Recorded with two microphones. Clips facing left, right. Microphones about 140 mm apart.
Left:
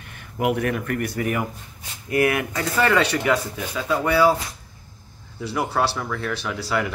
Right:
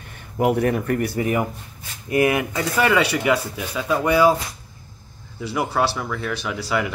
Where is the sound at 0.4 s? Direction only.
35° right (ahead or behind).